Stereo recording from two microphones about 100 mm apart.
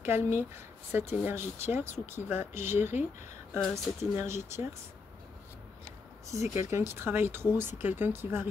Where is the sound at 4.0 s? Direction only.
30° right (ahead or behind).